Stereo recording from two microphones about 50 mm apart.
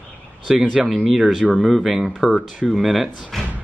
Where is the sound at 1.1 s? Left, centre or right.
Centre.